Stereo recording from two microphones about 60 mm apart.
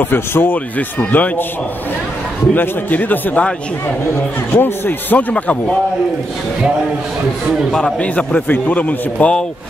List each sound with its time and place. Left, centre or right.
0.0 s speech: left
2.5 s a man's voice: left
5.3 s a man's voice: centre
8.0 s a man's voice: left